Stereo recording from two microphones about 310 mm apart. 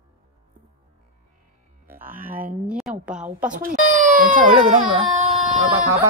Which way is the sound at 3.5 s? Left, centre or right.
Right.